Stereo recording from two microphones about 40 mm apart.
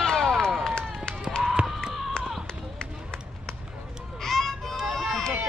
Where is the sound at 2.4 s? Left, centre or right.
Left.